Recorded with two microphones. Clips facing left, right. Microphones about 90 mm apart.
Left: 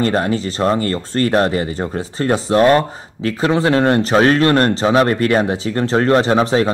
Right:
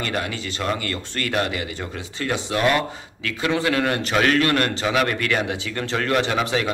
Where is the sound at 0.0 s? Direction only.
35° left (ahead or behind).